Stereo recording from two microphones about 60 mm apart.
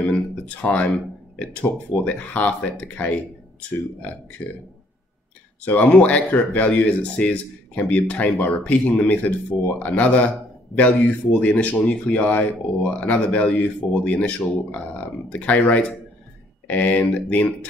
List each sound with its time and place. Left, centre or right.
0.6 s speech: left
5.7 s speech: left